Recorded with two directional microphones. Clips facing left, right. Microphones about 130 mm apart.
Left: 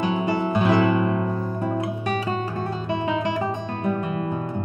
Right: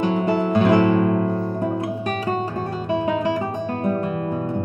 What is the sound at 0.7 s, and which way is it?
Music, 50° right (ahead or behind).